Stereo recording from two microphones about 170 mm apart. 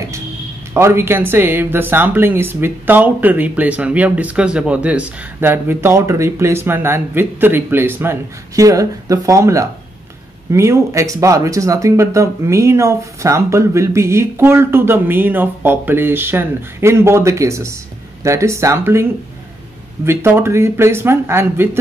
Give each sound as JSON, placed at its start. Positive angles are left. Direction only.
{"t": 0.7, "sound": "speech", "side_deg": -15}
{"t": 20.1, "sound": "speech", "side_deg": -15}